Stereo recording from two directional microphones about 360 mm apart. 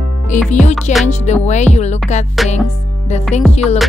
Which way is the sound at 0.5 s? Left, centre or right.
Centre.